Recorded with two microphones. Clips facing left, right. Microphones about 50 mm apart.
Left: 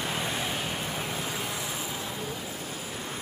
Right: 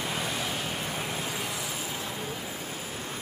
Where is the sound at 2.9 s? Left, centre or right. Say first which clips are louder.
Even; left.